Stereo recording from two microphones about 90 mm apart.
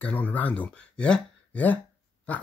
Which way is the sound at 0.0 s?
20° left (ahead or behind).